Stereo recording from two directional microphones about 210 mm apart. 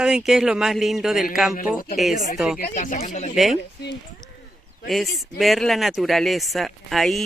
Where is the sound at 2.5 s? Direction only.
40° left (ahead or behind).